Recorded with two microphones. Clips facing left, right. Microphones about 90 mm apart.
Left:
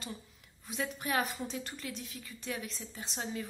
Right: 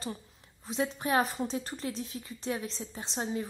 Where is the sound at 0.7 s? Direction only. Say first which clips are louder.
Right 5 dB; 30° right (ahead or behind).